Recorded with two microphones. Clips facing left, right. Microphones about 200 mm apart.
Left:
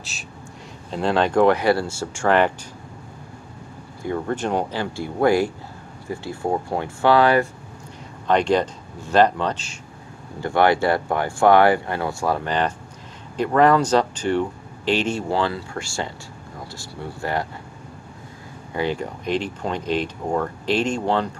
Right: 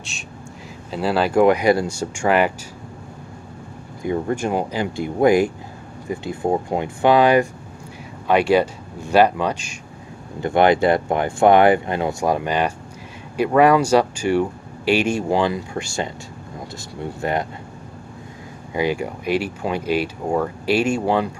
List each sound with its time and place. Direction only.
0.9 s speech: 5° right (ahead or behind)
4.0 s speech: 15° right (ahead or behind)
18.7 s speech: 10° right (ahead or behind)